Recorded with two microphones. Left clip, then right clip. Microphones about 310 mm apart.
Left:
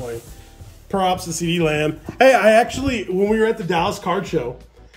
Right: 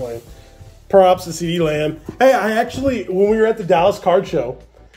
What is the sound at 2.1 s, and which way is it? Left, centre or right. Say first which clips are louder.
Speech: left 2 dB; centre.